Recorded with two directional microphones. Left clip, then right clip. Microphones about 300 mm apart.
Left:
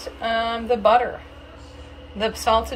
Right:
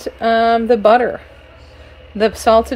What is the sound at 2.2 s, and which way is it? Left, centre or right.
Female singing, centre.